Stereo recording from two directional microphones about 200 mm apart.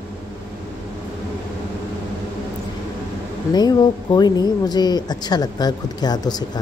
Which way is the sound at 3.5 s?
20° left (ahead or behind).